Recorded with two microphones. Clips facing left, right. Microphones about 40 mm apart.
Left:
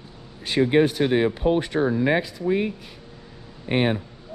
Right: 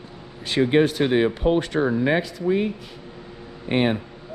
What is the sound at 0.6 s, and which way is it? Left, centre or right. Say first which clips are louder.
Speech: even; centre.